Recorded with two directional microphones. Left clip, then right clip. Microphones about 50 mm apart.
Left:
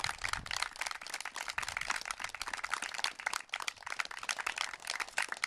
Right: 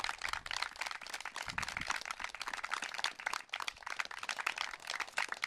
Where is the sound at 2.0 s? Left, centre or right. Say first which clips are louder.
Left 1 dB; centre.